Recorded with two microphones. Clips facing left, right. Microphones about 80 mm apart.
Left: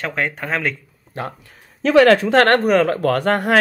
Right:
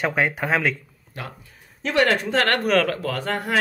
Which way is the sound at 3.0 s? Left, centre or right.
Left.